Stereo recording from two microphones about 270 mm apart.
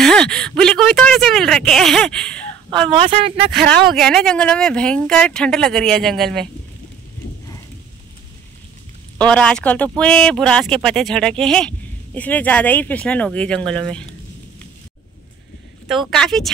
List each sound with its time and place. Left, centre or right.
0.0 s a sound: centre
2.9 s speech: right
3.8 s speech: centre
9.2 s speech: centre
16.1 s speech: centre